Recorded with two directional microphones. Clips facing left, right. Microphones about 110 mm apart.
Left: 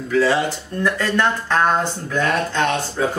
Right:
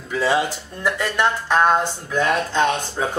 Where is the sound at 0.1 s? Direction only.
15° right (ahead or behind).